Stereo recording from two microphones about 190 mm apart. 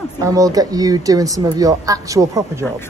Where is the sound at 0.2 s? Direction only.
20° right (ahead or behind).